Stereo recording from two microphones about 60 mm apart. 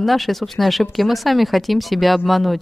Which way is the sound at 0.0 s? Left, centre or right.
Centre.